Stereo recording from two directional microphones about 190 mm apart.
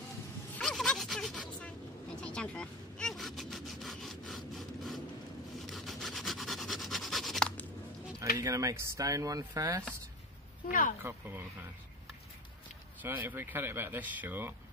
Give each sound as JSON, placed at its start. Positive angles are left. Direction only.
{"t": 0.6, "sound": "a sound", "side_deg": 5}
{"t": 2.1, "sound": "sawing", "side_deg": 5}
{"t": 5.7, "sound": "rub", "side_deg": 0}
{"t": 8.4, "sound": "speech", "side_deg": -15}
{"t": 10.7, "sound": "speech", "side_deg": 45}
{"t": 11.0, "sound": "speech", "side_deg": -10}
{"t": 13.0, "sound": "speech", "side_deg": -10}